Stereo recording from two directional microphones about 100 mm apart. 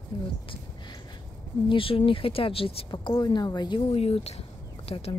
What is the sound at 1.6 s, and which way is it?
Speech, 65° left (ahead or behind).